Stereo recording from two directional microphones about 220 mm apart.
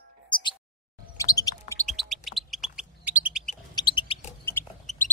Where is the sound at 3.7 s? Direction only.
20° left (ahead or behind).